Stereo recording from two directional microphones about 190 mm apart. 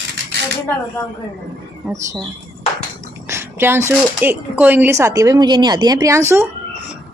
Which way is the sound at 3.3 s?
10° right (ahead or behind).